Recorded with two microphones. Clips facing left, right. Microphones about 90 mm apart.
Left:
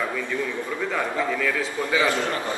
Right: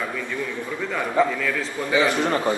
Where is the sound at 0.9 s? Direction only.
5° left (ahead or behind).